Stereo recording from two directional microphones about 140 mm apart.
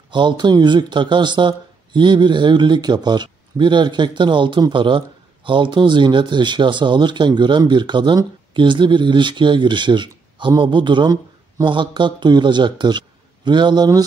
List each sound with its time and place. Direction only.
0.1 s speech: 35° right (ahead or behind)